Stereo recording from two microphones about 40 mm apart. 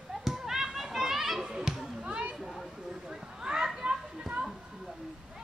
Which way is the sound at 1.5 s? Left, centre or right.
Centre.